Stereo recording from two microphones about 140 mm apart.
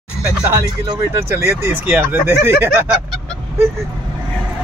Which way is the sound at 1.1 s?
20° right (ahead or behind).